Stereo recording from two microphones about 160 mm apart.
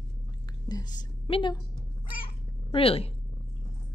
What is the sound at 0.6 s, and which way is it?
Speech, 25° left (ahead or behind).